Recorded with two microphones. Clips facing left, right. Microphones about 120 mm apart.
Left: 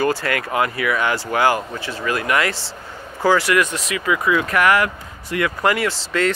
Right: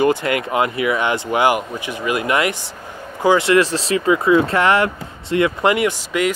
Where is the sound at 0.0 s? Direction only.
20° right (ahead or behind).